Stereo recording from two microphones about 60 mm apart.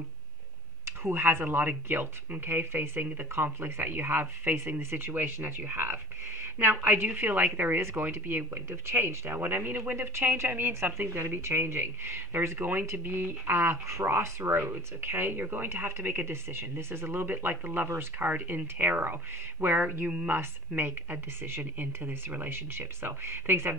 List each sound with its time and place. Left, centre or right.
0.8 s speech: right